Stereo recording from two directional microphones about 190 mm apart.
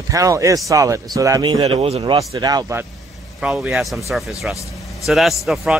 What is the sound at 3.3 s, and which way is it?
Speech, 5° right (ahead or behind).